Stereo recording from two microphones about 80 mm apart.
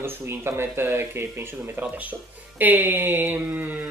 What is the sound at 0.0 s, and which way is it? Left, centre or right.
Speech, right.